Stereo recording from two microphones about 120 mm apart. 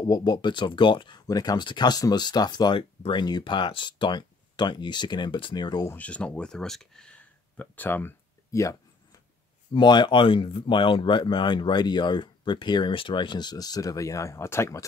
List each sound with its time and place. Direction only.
0.1 s speech: 35° left (ahead or behind)
5.9 s speech: 10° left (ahead or behind)
9.8 s speech: 40° left (ahead or behind); by 14.9 s 25° left (ahead or behind)